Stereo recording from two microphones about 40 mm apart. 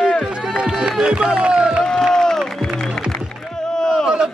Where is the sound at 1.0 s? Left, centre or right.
Right.